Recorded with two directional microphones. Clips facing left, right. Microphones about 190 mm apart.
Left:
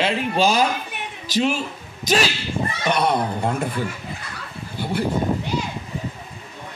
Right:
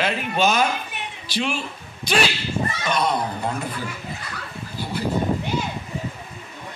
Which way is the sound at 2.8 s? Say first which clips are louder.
Left 3 dB; 60° left (ahead or behind).